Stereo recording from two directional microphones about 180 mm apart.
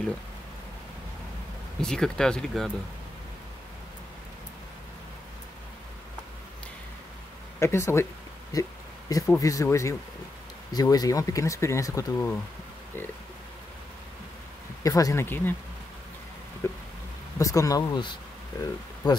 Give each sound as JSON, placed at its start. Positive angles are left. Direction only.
{"t": 1.8, "sound": "speech", "side_deg": 5}
{"t": 7.6, "sound": "speech", "side_deg": 15}
{"t": 14.8, "sound": "speech", "side_deg": 20}
{"t": 16.6, "sound": "a sound", "side_deg": 15}
{"t": 17.4, "sound": "speech", "side_deg": 20}